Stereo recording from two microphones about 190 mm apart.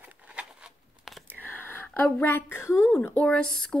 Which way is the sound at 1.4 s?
10° left (ahead or behind).